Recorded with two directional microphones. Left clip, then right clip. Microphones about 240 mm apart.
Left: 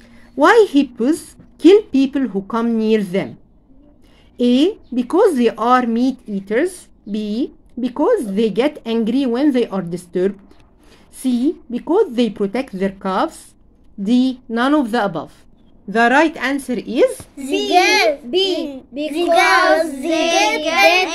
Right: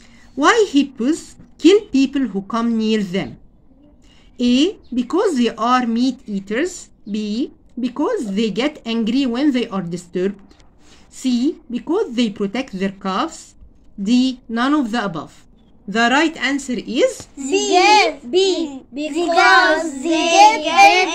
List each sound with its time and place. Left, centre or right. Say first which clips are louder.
0.4 s speech: left 3 dB; centre
4.4 s a woman's voice: left 2 dB; centre
17.4 s child singing: even; left
18.3 s a child's voice: right 1 dB; centre
19.3 s child singing: even; left